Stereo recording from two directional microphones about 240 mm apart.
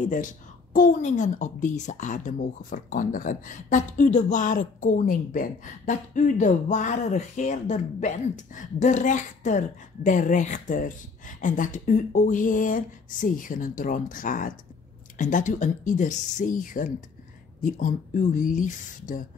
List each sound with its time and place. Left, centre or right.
0.0 s a woman's voice: left